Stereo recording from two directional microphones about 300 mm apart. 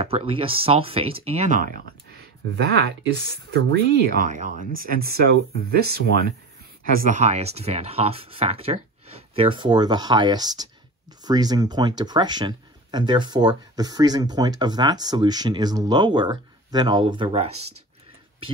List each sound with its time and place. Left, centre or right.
0.0 s speech: centre